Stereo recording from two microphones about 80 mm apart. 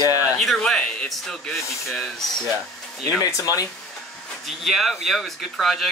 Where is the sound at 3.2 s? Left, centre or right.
Left.